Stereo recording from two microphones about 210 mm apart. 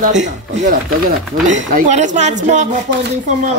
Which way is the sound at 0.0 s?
35° right (ahead or behind).